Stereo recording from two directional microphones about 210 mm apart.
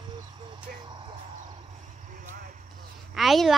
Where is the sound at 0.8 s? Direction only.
20° right (ahead or behind).